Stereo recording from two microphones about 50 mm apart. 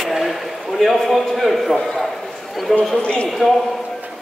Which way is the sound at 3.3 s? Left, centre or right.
Centre.